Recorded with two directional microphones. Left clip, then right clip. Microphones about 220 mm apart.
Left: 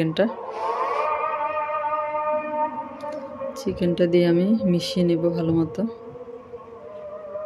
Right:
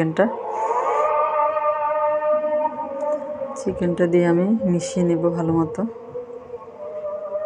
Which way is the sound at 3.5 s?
15° left (ahead or behind).